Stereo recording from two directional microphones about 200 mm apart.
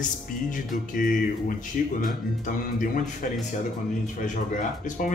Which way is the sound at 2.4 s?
40° left (ahead or behind).